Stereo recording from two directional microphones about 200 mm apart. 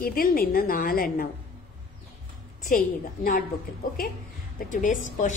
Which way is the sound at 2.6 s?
45° left (ahead or behind).